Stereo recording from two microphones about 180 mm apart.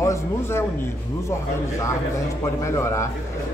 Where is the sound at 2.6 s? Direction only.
15° left (ahead or behind).